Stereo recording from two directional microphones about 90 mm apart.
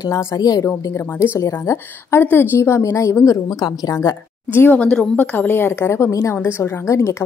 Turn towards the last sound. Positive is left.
turn(degrees=30)  # may be behind; listen again after turning